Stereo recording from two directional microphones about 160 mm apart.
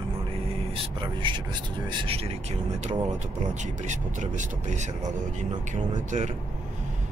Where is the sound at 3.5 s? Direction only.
50° right (ahead or behind).